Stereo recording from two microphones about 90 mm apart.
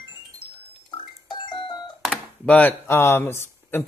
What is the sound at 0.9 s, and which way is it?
Music, 60° left (ahead or behind).